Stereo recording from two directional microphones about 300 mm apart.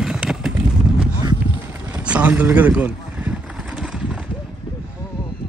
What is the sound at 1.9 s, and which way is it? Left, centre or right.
Vehicle, centre.